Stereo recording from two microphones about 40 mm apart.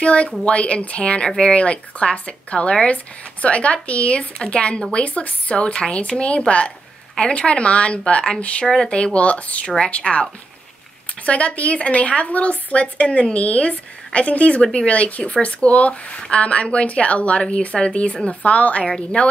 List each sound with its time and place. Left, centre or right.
0.0 s a woman's voice: left
11.2 s a woman's voice: left
14.6 s speech: left
14.9 s a woman's voice: left